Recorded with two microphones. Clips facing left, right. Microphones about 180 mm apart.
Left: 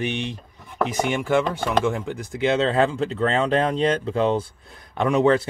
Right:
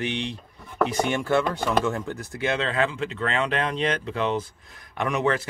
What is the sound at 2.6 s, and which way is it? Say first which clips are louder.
Speech: left 5 dB; 35° left (ahead or behind).